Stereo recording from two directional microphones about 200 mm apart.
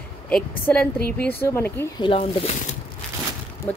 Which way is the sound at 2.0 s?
30° left (ahead or behind).